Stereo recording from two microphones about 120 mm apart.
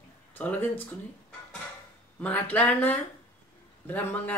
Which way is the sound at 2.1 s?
10° left (ahead or behind).